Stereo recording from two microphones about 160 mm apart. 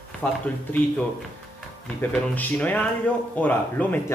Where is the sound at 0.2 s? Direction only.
10° left (ahead or behind).